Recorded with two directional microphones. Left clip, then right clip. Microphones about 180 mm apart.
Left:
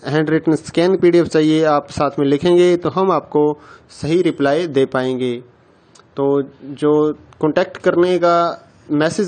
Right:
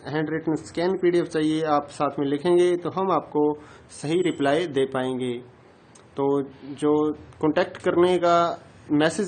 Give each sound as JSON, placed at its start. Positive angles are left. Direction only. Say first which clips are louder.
{"t": 0.0, "sound": "speech", "louder": "left 10 dB", "side_deg": 40}